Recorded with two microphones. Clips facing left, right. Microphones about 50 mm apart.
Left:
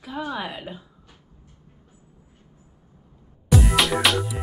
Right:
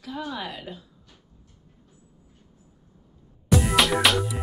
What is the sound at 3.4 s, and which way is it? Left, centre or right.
Music, centre.